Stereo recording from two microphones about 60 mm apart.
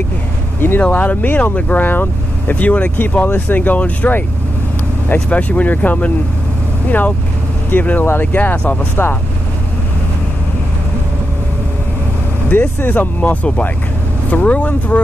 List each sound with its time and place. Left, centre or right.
0.6 s speech: left
12.4 s speech: left